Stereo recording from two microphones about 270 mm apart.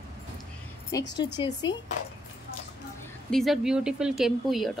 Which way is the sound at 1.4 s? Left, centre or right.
Centre.